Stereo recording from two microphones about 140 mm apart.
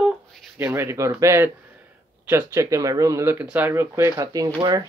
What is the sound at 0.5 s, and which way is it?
Speech, 15° right (ahead or behind).